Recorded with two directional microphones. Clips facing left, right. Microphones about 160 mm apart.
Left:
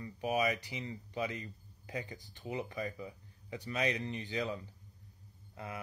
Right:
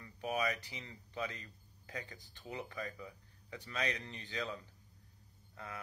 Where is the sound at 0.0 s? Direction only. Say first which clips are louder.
Left 4 dB; 15° left (ahead or behind).